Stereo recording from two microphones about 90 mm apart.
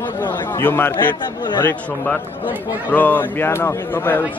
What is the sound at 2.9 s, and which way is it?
Speech, 20° left (ahead or behind).